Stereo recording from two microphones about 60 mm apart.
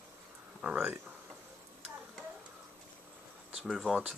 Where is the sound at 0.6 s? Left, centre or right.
Right.